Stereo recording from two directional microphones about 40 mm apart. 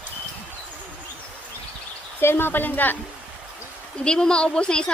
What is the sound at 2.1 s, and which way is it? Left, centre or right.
Speech, left.